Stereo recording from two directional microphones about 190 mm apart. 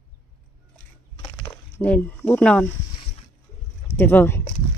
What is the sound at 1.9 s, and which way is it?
Speech, 5° left (ahead or behind).